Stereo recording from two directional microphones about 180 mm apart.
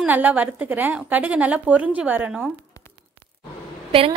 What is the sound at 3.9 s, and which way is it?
Speech, 30° right (ahead or behind).